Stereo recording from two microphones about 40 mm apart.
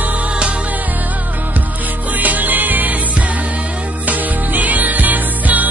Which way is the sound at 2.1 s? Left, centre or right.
Right.